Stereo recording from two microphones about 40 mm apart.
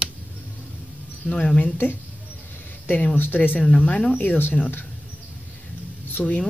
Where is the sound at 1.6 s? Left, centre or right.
Left.